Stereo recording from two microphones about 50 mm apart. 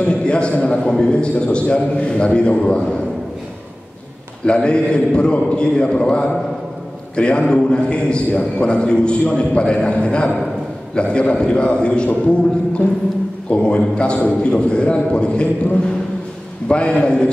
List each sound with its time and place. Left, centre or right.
0.0 s a man's voice: left
4.5 s a man's voice: left
13.5 s a man's voice: left